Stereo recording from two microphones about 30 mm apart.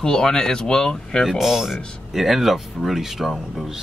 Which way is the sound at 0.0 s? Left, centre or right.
Left.